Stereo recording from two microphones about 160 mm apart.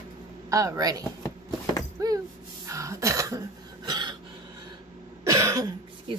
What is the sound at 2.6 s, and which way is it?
Throat clearing, 20° right (ahead or behind).